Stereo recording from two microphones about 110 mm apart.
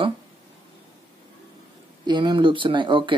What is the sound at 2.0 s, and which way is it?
Speech, 45° right (ahead or behind).